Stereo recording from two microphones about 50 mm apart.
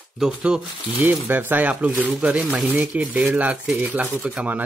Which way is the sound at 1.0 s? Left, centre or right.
Right.